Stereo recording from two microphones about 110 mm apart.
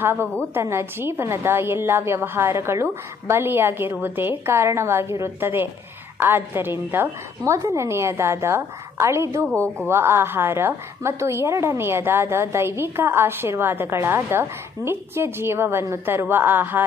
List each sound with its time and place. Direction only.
0.0 s a woman's voice: 20° right (ahead or behind)